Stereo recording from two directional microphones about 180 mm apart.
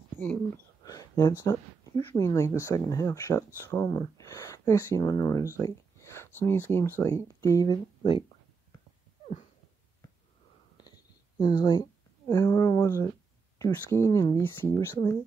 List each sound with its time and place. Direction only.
0.8 s a sound: 20° left (ahead or behind)
1.4 s speech: 20° left (ahead or behind)
11.3 s speech: 25° left (ahead or behind)